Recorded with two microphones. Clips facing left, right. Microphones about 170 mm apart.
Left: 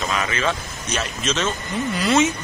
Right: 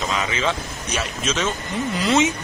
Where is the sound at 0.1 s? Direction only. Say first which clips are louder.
Even; 15° right (ahead or behind).